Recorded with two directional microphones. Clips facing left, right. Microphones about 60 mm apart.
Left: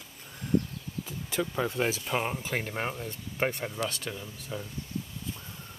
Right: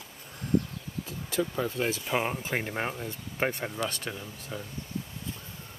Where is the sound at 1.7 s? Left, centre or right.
Left.